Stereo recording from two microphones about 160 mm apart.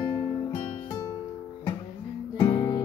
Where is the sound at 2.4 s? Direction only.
20° left (ahead or behind).